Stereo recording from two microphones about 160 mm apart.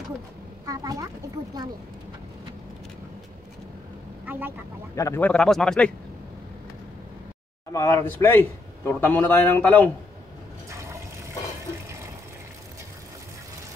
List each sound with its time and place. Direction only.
0.7 s speech: 20° right (ahead or behind)
4.3 s speech: 10° right (ahead or behind)
4.9 s a man's voice: 15° left (ahead or behind)
7.7 s a man's voice: 20° left (ahead or behind)
10.7 s liquid: 15° right (ahead or behind)